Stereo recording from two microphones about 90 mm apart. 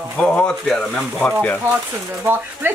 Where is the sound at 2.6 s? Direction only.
25° right (ahead or behind).